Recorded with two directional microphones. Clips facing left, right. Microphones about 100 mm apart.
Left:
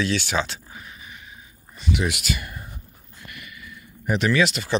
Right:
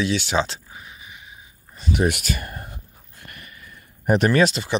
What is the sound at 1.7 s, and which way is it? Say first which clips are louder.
Speech: right 4 dB; 40° right (ahead or behind).